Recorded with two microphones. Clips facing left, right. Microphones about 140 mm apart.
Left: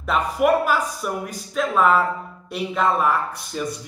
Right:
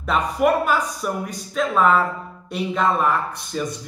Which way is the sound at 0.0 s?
5° left (ahead or behind).